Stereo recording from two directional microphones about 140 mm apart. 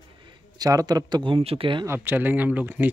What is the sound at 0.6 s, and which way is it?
Speech, 25° right (ahead or behind).